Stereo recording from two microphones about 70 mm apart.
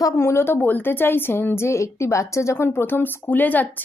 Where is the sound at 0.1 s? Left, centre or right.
Left.